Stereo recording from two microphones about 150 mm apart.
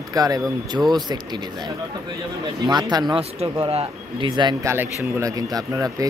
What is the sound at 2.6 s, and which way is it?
Speech, 30° right (ahead or behind).